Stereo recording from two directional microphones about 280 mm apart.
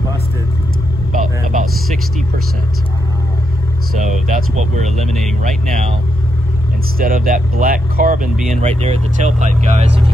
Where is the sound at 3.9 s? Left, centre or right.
Right.